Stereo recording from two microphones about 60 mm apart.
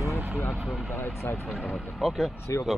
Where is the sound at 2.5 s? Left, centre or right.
Left.